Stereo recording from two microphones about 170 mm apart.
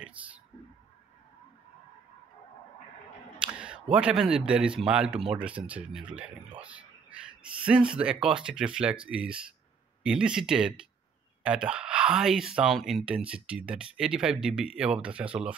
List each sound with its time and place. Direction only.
3.3 s speech: 5° right (ahead or behind)